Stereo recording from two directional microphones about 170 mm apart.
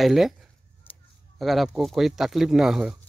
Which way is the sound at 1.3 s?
Centre (ahead or behind).